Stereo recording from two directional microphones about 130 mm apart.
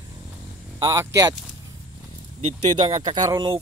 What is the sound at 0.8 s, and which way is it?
Speech, 25° right (ahead or behind).